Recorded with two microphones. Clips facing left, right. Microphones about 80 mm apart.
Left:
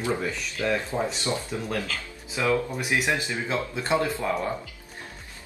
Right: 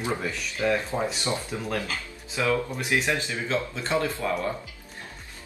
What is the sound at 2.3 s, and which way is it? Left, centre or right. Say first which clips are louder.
Speech: left 1 dB; left.